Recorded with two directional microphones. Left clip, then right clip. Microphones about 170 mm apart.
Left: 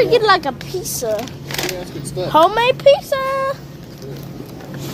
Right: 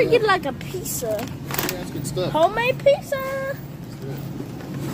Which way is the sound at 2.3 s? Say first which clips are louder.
Left 7 dB; 35° left (ahead or behind).